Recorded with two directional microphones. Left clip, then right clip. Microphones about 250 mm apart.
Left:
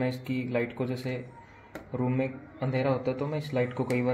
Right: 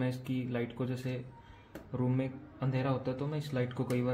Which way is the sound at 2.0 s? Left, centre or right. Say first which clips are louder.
Left 5 dB; centre.